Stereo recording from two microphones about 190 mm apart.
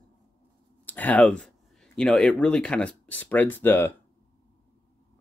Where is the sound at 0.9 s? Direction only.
10° left (ahead or behind).